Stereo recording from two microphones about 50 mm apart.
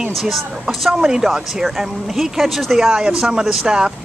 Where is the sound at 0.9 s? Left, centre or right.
Centre.